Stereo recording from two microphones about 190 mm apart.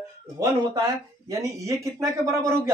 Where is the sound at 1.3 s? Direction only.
15° right (ahead or behind).